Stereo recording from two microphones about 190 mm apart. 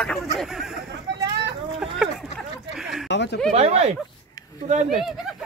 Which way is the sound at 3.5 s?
35° right (ahead or behind).